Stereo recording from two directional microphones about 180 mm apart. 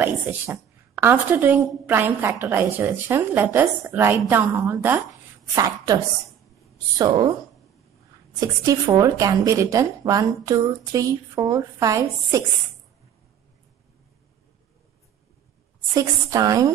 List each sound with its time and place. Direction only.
0.0 s a woman's voice: 10° right (ahead or behind)
7.0 s a woman's voice: 20° right (ahead or behind)
8.4 s a woman's voice: 20° right (ahead or behind)
15.9 s a woman's voice: 20° right (ahead or behind)